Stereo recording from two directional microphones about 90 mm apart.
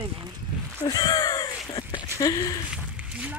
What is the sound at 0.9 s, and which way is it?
Speech, 45° left (ahead or behind).